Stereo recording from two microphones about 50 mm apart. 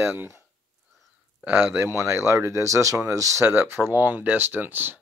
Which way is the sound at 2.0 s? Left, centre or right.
Right.